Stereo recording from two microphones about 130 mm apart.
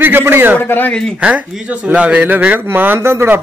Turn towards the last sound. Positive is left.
turn(degrees=-20)  # may be behind; listen again after turning